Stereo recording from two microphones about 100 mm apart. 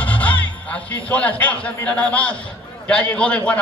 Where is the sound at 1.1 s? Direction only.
15° left (ahead or behind).